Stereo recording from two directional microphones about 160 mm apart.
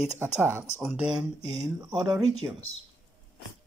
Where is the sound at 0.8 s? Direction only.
Centre (ahead or behind).